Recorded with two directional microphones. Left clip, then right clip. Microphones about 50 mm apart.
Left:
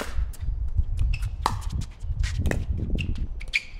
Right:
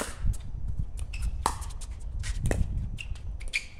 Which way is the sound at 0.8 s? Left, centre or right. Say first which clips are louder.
Left 4 dB; centre.